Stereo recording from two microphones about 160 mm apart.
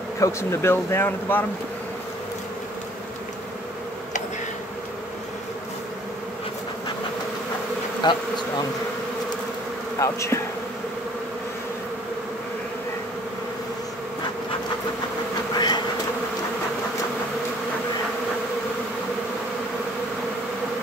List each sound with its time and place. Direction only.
0.2 s speech: 15° left (ahead or behind)
8.0 s speech: 30° left (ahead or behind)
9.9 s speech: 20° left (ahead or behind)
15.5 s bee: 25° left (ahead or behind)